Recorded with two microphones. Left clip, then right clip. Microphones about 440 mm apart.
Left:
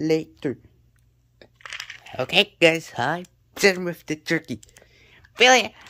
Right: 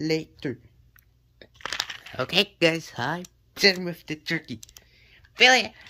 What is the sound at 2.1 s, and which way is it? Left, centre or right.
Speech, centre.